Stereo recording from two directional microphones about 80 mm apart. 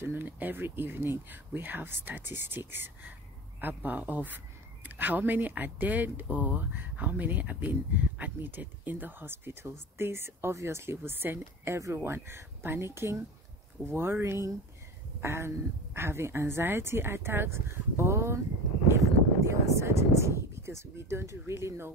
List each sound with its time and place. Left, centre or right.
0.0 s speech: right